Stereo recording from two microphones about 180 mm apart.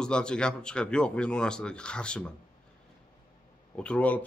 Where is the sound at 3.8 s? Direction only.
5° left (ahead or behind).